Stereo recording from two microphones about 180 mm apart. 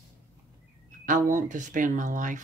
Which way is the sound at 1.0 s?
45° right (ahead or behind).